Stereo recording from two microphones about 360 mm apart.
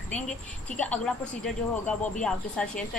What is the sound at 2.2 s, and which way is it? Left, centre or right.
Speech, centre.